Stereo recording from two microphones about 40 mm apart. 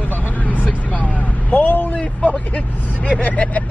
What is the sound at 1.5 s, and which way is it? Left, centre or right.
Speech, left.